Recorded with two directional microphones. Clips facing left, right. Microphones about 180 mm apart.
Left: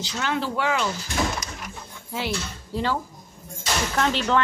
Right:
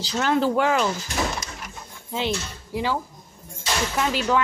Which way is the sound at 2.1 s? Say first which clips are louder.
Right 2 dB; 15° right (ahead or behind).